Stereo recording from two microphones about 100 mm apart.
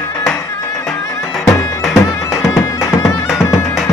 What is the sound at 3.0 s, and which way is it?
Music, 30° left (ahead or behind).